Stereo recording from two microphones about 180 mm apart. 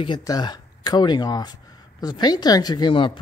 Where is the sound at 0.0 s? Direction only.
25° left (ahead or behind).